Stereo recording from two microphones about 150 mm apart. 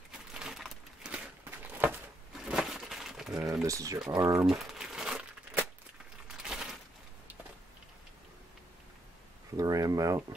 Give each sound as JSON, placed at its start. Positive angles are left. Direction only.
{"t": 0.3, "sound": "crumpling", "side_deg": -5}
{"t": 3.6, "sound": "speech", "side_deg": -20}
{"t": 4.5, "sound": "crumpling", "side_deg": -5}
{"t": 6.4, "sound": "a sound", "side_deg": -5}
{"t": 9.6, "sound": "speech", "side_deg": -25}